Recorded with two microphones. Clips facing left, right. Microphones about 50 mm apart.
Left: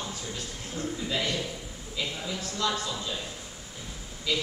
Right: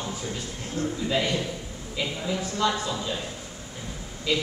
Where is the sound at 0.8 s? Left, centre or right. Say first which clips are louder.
Right 5 dB; left.